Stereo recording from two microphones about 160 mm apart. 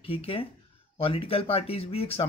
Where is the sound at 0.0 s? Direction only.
35° left (ahead or behind).